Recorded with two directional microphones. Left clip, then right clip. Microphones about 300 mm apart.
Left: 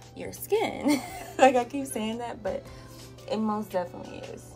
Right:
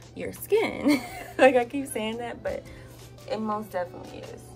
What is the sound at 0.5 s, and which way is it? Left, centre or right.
A woman's voice, centre.